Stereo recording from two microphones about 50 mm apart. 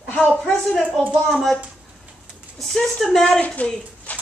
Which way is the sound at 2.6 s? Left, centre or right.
Centre.